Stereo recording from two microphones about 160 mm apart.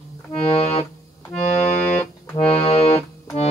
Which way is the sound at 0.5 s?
40° left (ahead or behind).